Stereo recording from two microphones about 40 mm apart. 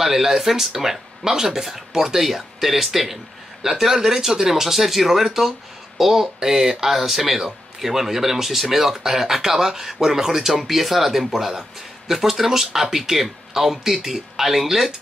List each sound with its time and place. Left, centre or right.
0.0 s speech: centre